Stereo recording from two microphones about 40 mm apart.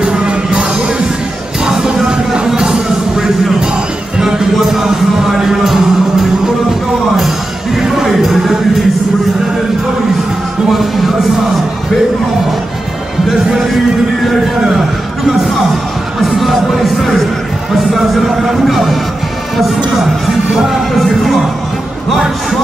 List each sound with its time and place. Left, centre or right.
0.0 s music: right
7.8 s music: centre
10.7 s a sound: centre
16.2 s music: centre
17.9 s a sound: centre
20.6 s music: centre